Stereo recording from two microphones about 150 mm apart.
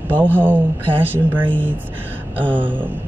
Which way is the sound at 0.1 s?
10° left (ahead or behind).